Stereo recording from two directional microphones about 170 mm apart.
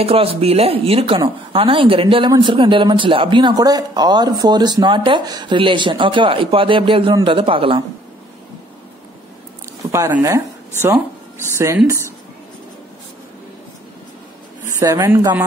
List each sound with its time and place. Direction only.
0.0 s a woman's voice: 35° right (ahead or behind)
9.8 s speech: 20° right (ahead or behind)
14.8 s a woman's voice: 20° right (ahead or behind)